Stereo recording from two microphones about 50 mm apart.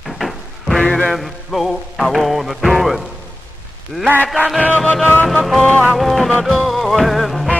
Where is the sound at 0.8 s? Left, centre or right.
Centre.